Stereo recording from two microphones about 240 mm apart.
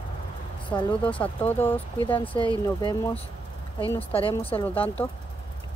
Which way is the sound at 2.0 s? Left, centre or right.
Left.